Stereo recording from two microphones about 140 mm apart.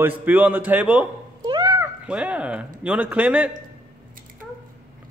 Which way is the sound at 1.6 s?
20° right (ahead or behind).